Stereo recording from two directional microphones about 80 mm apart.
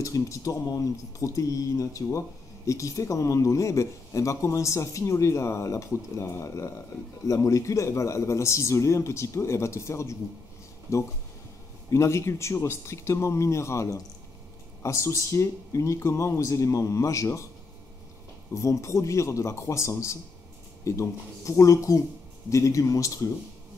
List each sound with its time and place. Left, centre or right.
0.0 s speech: left
18.5 s a man's voice: left